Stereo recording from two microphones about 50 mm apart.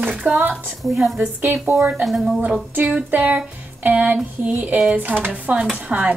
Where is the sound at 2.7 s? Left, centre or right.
Right.